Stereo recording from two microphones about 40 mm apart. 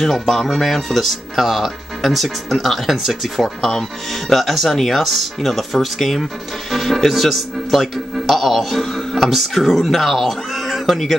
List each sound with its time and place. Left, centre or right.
0.0 s speech: centre
4.3 s speech: centre